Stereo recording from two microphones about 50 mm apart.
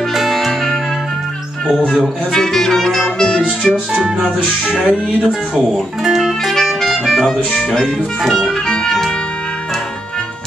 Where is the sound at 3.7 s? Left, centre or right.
Centre.